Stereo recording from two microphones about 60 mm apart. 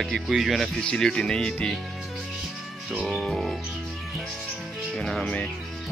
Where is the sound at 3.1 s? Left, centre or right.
Centre.